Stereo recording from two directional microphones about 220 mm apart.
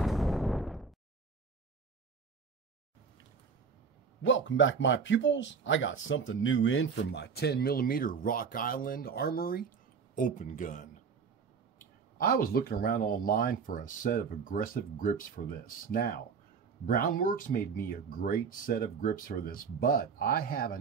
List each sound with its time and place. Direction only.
0.0 s artillery fire: centre (ahead or behind)
4.2 s speech: 60° left (ahead or behind); by 10.9 s 35° left (ahead or behind)
12.2 s speech: 40° left (ahead or behind)